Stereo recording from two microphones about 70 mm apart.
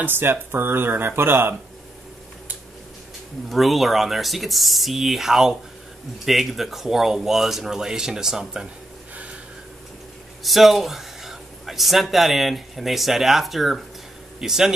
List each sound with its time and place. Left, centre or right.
0.0 s speech: right
3.4 s speech: centre
10.4 s speech: centre